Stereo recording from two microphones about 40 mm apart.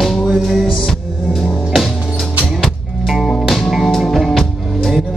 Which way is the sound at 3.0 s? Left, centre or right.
Centre.